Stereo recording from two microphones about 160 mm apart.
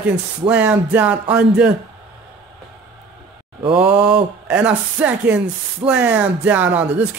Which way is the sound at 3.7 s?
10° right (ahead or behind).